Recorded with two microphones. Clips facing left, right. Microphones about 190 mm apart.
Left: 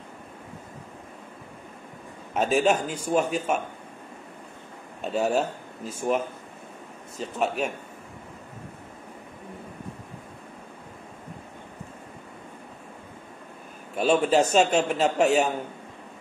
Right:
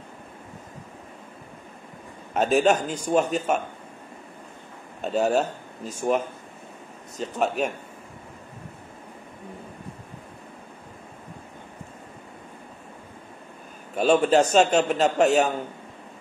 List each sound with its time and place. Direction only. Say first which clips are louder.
2.3 s a man's voice: right 2 dB; 5° left (ahead or behind)
5.0 s a man's voice: right 2 dB; 5° left (ahead or behind)
14.0 s a man's voice: right 2 dB; centre (ahead or behind)